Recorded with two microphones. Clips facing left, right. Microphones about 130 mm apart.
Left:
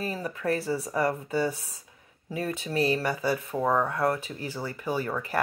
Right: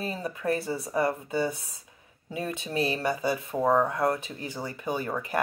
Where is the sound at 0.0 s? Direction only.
20° right (ahead or behind).